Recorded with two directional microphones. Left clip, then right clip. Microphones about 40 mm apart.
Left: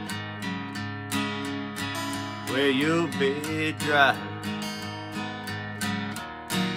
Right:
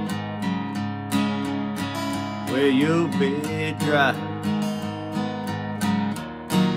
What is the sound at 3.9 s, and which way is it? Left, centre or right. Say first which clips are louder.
Speech: even; left.